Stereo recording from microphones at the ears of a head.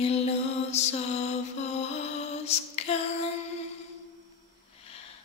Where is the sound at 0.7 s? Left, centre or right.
Left.